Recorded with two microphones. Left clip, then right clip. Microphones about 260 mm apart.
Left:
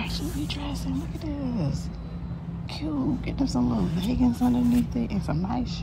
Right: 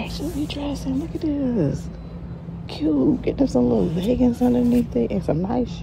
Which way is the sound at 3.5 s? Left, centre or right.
Left.